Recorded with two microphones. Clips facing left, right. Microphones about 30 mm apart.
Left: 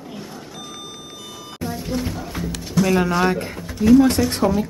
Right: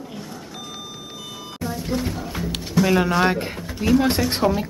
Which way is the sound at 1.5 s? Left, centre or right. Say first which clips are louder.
Even; centre.